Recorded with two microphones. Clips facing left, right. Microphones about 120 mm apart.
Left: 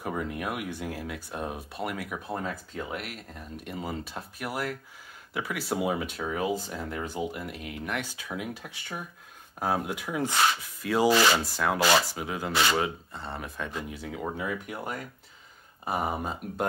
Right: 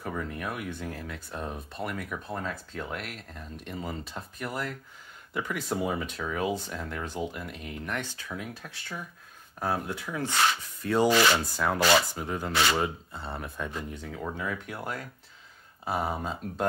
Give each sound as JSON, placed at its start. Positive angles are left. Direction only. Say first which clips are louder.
{"t": 0.0, "sound": "speech", "louder": "left 2 dB", "side_deg": 15}
{"t": 10.8, "sound": "speech", "louder": "even", "side_deg": 5}